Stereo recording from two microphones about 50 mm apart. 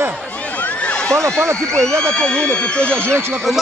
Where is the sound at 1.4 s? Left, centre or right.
Right.